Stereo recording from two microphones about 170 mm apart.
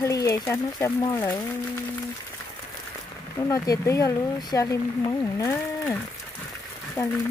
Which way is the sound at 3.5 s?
20° left (ahead or behind).